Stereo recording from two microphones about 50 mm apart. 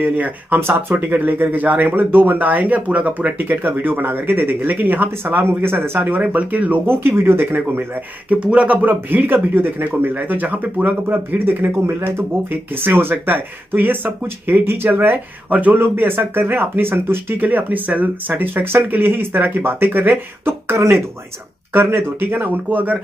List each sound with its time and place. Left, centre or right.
0.0 s speech: right
0.6 s speech: right
0.9 s speech: right
6.0 s speech: right
6.9 s speech: right
8.3 s speech: right
8.8 s speech: right